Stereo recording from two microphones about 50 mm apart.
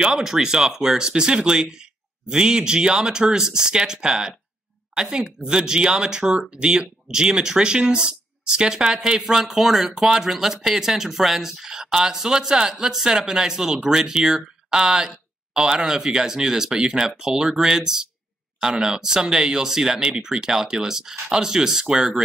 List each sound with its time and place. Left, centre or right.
0.0 s speech: centre